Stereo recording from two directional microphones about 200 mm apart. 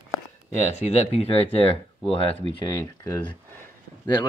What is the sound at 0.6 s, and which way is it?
Speech, 35° left (ahead or behind).